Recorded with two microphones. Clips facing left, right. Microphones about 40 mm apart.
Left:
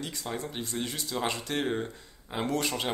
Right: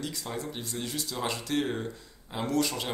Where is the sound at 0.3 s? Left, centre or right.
Centre.